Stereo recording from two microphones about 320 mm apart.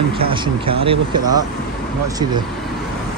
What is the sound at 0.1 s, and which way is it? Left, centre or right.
Speech, centre.